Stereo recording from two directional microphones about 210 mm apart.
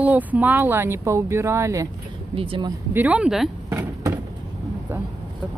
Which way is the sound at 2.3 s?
25° right (ahead or behind).